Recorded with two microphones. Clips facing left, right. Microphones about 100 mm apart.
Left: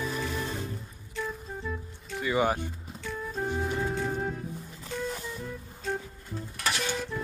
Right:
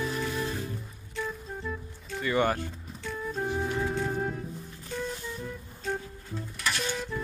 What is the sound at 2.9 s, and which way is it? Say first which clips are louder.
Music: right 1 dB; centre (ahead or behind).